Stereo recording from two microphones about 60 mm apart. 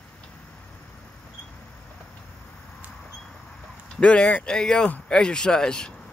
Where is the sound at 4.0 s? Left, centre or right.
Centre.